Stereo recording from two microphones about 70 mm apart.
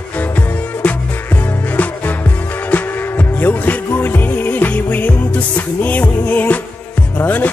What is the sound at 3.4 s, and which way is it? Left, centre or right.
Music, left.